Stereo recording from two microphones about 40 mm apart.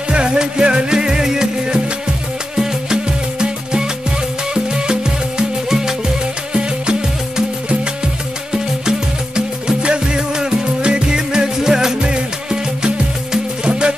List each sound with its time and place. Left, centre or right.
0.1 s music: right
5.7 s music: centre
6.5 s music: right